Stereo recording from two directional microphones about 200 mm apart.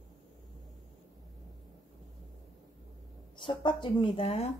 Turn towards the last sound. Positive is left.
turn(degrees=30)  # may be behind; listen again after turning